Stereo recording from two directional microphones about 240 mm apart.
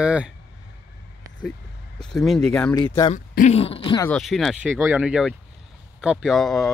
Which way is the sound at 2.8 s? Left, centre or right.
Centre.